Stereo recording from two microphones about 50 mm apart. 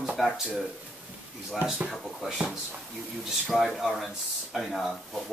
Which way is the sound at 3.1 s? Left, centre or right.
Centre.